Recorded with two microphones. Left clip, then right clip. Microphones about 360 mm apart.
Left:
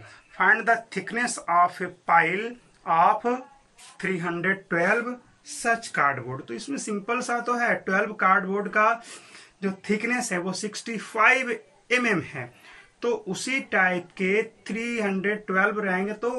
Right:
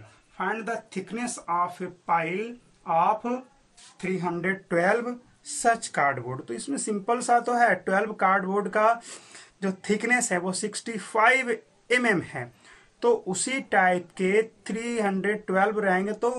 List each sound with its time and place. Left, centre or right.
0.4 s speech: centre; by 16.3 s right